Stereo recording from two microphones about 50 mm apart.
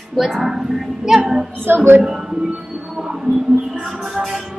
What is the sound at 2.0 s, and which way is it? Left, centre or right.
Music, centre.